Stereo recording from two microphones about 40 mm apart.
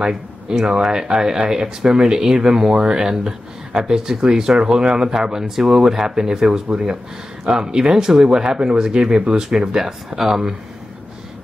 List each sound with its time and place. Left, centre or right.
0.1 s speech: centre